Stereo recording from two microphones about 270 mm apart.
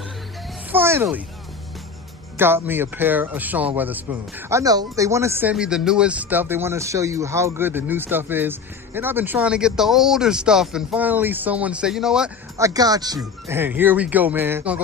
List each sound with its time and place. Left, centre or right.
0.7 s music: centre
2.3 s speech: centre